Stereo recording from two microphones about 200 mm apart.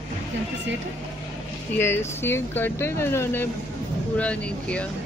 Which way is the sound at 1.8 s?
10° left (ahead or behind).